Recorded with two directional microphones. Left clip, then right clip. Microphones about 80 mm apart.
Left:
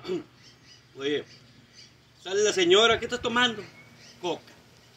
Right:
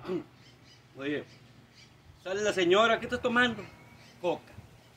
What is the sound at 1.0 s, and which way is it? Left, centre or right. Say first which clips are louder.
Speech: left 6 dB; centre.